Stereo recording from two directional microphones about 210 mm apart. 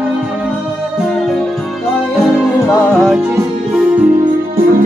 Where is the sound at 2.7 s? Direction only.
5° left (ahead or behind).